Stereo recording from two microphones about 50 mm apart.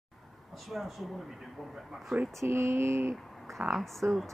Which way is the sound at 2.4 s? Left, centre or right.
Right.